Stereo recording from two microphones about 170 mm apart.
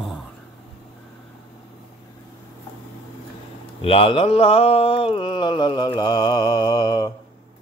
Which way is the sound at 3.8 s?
30° left (ahead or behind).